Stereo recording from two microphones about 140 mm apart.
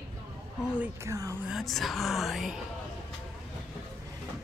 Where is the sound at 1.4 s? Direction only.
Centre (ahead or behind).